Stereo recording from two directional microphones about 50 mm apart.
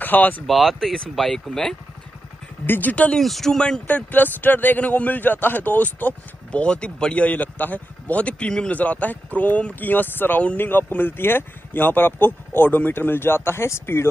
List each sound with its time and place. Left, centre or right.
0.0 s speech: left
0.5 s speech: centre
2.6 s a man's voice: left
3.2 s speech: centre
3.8 s a man's voice: left
6.5 s a man's voice: left